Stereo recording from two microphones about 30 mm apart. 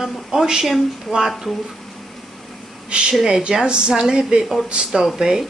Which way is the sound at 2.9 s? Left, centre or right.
Right.